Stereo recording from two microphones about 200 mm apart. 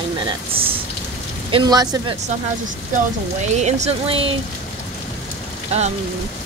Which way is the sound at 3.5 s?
35° right (ahead or behind).